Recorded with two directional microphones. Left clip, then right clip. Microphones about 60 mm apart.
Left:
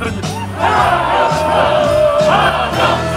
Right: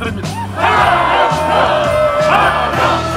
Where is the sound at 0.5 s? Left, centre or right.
Centre.